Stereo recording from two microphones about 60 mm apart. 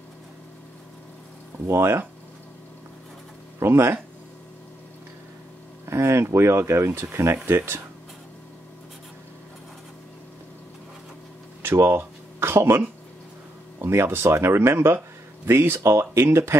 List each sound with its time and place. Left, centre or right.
1.7 s speech: right
3.5 s speech: right
5.9 s speech: right
11.6 s a sound: right
13.7 s speech: right